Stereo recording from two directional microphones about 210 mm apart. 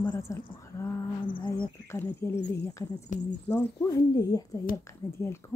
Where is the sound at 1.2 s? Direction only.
20° left (ahead or behind).